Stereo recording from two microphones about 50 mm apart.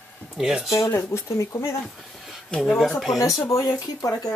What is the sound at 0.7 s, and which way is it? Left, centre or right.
Speech, left.